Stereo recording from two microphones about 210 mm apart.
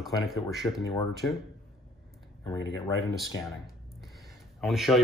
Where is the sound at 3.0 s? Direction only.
Centre (ahead or behind).